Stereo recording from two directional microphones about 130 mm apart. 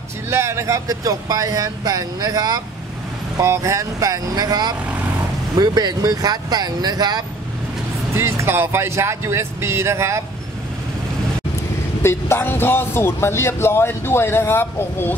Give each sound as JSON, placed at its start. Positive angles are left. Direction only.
{"t": 0.3, "sound": "speech", "side_deg": -20}
{"t": 8.1, "sound": "speech", "side_deg": -20}
{"t": 12.0, "sound": "speech", "side_deg": 20}